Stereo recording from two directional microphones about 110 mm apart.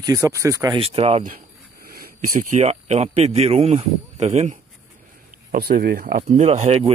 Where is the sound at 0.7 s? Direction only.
60° right (ahead or behind).